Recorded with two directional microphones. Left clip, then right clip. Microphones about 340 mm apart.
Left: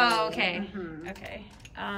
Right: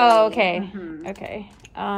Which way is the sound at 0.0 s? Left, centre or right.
Centre.